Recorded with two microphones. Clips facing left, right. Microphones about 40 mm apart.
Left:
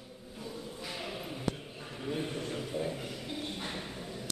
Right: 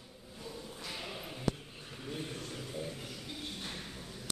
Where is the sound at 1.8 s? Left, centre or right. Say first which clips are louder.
Left 6 dB; left.